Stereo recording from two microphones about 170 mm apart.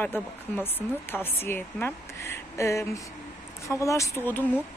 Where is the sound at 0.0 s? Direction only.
10° left (ahead or behind).